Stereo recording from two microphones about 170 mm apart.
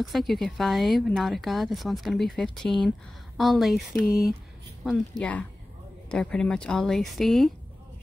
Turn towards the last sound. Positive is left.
turn(degrees=0)  # may be behind; listen again after turning